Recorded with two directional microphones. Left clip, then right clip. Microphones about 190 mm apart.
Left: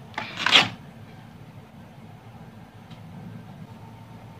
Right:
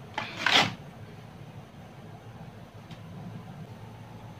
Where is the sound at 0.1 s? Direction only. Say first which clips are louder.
Left 4 dB; 45° left (ahead or behind).